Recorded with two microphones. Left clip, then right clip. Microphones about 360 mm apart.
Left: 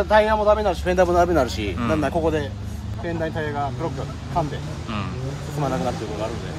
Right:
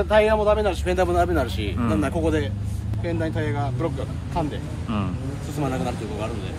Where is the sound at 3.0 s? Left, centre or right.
Centre.